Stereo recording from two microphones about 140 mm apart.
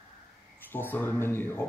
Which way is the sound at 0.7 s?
15° left (ahead or behind).